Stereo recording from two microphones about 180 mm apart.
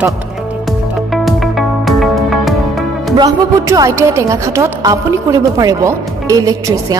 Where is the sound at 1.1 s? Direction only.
Centre (ahead or behind).